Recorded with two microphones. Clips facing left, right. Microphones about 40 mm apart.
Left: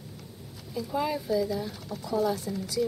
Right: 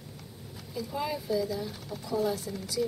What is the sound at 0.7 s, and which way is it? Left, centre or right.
Speech, centre.